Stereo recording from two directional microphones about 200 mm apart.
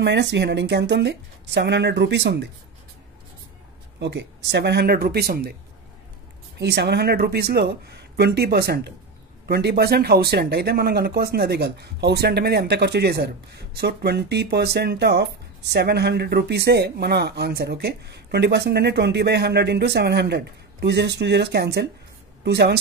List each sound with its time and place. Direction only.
0.0 s speech: 60° right (ahead or behind)
4.0 s speech: 60° right (ahead or behind)
6.6 s a woman's voice: 55° right (ahead or behind)